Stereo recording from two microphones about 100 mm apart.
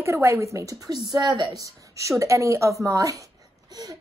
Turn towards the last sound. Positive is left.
turn(degrees=-35)  # may be behind; listen again after turning